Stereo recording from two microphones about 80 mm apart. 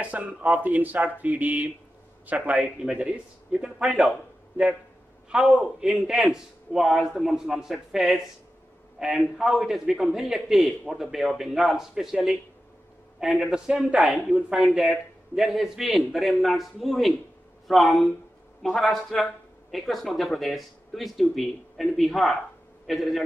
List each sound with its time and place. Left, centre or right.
0.3 s a man's voice: centre
5.3 s a man's voice: centre